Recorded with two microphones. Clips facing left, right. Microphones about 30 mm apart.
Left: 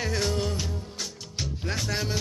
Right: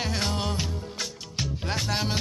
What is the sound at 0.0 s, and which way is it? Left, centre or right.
Music, right.